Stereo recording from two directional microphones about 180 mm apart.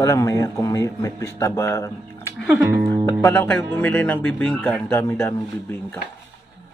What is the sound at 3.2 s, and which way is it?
Speech, 15° left (ahead or behind).